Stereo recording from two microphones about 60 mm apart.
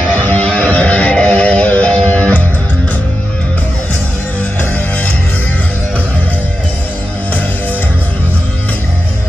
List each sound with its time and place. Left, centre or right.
0.2 s music: left